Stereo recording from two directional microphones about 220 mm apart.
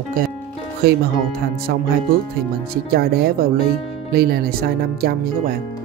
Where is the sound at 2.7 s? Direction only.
45° right (ahead or behind).